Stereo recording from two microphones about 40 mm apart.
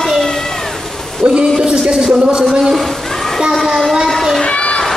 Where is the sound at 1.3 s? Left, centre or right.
Right.